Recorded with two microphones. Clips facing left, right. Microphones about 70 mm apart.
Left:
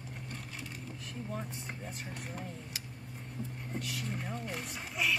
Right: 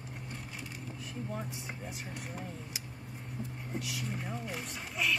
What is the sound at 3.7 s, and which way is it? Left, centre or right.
Speech, centre.